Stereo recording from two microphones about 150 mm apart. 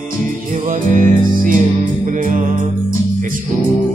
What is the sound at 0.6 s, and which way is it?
Music, 65° right (ahead or behind).